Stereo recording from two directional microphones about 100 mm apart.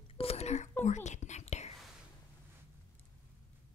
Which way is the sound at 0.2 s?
90° left.